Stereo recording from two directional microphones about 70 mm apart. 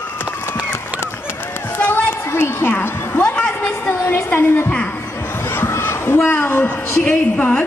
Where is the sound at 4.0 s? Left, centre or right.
Left.